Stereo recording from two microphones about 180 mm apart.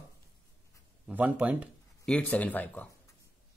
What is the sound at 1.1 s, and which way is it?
Speech, 10° right (ahead or behind).